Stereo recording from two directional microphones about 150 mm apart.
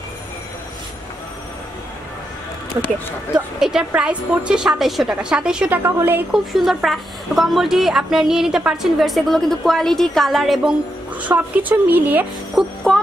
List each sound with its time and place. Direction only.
2.8 s speech: 20° right (ahead or behind)
3.3 s a woman's voice: 5° right (ahead or behind)
6.3 s a woman's voice: centre (ahead or behind)
12.5 s music: centre (ahead or behind)